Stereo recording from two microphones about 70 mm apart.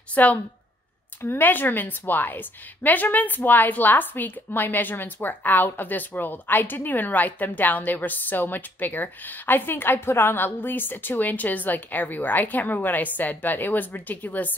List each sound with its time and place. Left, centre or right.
0.1 s a woman's voice: left